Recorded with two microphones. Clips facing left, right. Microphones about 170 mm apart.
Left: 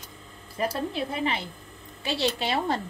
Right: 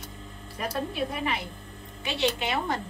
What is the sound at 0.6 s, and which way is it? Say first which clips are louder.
A woman's voice: left 2 dB; 30° left (ahead or behind).